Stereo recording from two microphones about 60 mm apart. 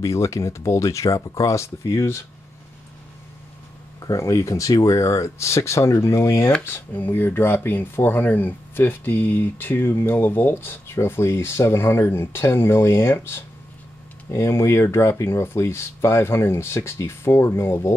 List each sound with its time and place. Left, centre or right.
0.0 s speech: left
4.1 s speech: left
6.6 s speech: left